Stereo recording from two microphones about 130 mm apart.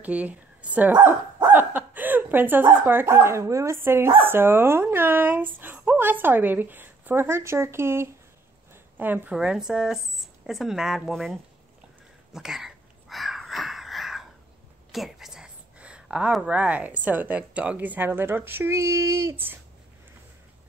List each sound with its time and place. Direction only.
0.0 s a woman's voice: 10° right (ahead or behind)
12.3 s crow: 5° right (ahead or behind)
14.9 s a woman's voice: centre (ahead or behind)